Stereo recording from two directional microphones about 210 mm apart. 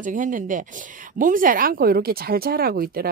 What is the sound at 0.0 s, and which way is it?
Speech, 40° right (ahead or behind).